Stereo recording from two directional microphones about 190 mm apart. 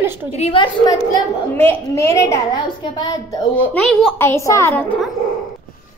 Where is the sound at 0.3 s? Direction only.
30° left (ahead or behind).